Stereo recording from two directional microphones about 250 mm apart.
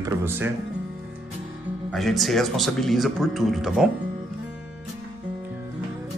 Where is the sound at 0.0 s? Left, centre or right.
Centre.